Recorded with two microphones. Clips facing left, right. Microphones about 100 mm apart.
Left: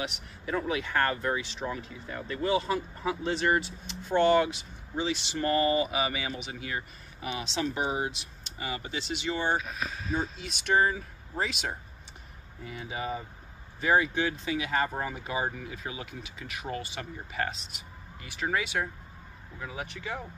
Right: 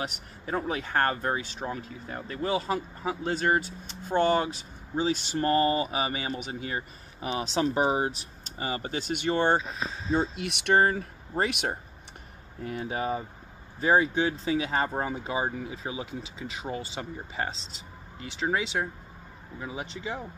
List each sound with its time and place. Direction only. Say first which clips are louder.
0.0 s speech: right 1 dB; 40° right (ahead or behind); by 9.6 s 55° right (ahead or behind)
9.6 s speech: right 1 dB; 25° right (ahead or behind)
10.3 s speech: right 3 dB; 65° right (ahead or behind); by 20.2 s 20° right (ahead or behind)